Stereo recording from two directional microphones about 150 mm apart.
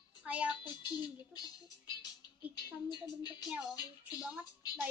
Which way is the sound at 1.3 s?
25° left (ahead or behind).